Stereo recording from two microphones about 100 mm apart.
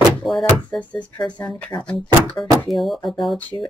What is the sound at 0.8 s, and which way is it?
Speech, 15° left (ahead or behind).